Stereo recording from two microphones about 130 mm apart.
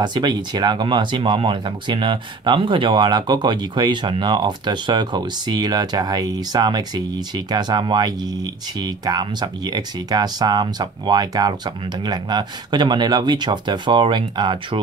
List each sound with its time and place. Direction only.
0.0 s speech: 35° right (ahead or behind)